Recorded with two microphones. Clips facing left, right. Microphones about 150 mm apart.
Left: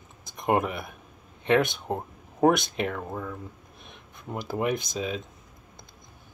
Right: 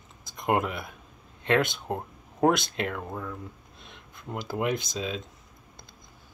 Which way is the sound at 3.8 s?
20° left (ahead or behind).